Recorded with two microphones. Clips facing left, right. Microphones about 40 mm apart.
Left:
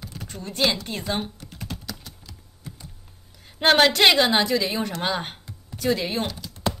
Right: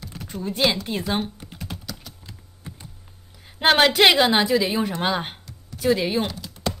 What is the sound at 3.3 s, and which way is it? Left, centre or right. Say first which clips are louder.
A woman's voice: even; centre.